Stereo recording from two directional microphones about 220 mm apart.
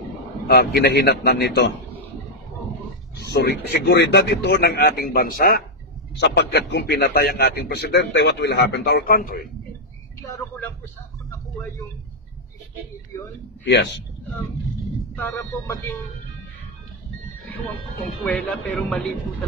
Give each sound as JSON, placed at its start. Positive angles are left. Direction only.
{"t": 0.5, "sound": "a man's voice", "side_deg": 45}
{"t": 3.3, "sound": "a man's voice", "side_deg": 50}
{"t": 13.7, "sound": "a man's voice", "side_deg": 50}
{"t": 15.1, "sound": "a man's voice", "side_deg": 10}
{"t": 18.2, "sound": "a man's voice", "side_deg": 5}